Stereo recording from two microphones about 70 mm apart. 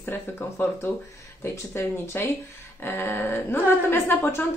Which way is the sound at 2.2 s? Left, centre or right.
Left.